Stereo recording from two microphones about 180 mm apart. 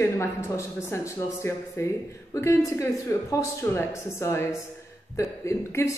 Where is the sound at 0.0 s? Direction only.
15° left (ahead or behind).